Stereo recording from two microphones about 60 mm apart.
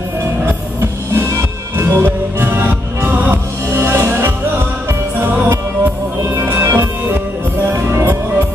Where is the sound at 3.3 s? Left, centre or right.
Right.